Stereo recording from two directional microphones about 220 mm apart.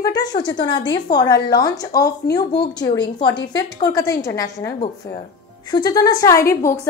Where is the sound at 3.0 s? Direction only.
20° left (ahead or behind).